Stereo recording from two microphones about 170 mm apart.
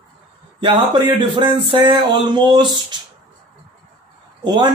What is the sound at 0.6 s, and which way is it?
Speech, 25° right (ahead or behind).